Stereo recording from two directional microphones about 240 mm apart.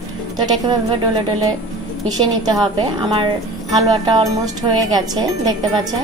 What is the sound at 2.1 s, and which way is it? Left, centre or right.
A woman's voice, centre.